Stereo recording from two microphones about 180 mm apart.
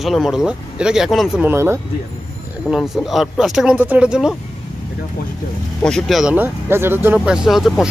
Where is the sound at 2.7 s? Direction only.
Centre (ahead or behind).